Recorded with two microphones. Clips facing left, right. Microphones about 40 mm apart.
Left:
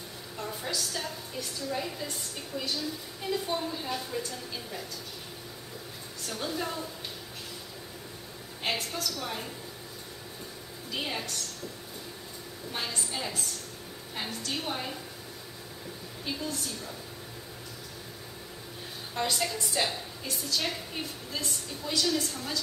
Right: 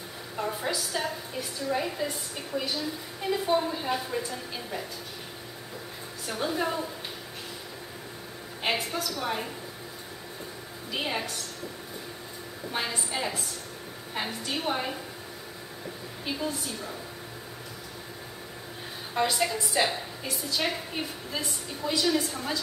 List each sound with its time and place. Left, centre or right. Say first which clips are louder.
0.4 s a woman's voice: right 4 dB; centre
6.2 s a woman's voice: right 5 dB; centre
8.6 s a woman's voice: right 3 dB; centre
10.9 s a woman's voice: right 3 dB; centre
12.7 s a woman's voice: right 4 dB; centre
16.3 s a woman's voice: right 3 dB; centre
19.1 s a woman's voice: right 4 dB; centre